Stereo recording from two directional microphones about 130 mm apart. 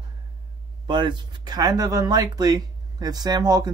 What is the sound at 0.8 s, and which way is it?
Speech, 40° right (ahead or behind).